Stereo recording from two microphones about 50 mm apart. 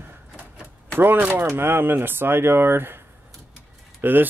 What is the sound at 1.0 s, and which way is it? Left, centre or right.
Speech, right.